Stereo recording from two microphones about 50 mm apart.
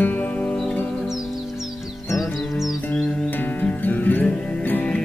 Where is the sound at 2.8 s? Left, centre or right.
Left.